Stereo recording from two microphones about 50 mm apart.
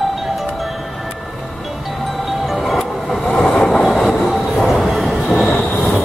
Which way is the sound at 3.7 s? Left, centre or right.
Centre.